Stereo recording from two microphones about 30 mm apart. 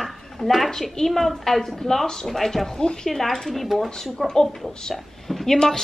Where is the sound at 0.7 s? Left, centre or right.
Centre.